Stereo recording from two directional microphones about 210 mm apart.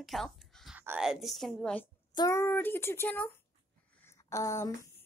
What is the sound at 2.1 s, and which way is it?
Speech, 15° left (ahead or behind).